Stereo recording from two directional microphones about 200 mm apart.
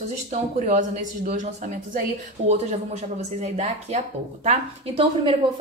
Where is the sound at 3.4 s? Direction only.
35° right (ahead or behind).